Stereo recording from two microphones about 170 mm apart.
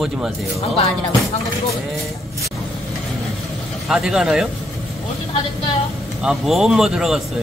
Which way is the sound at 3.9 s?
5° right (ahead or behind).